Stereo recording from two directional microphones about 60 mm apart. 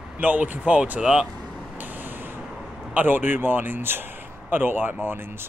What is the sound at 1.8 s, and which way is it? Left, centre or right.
Vehicle, right.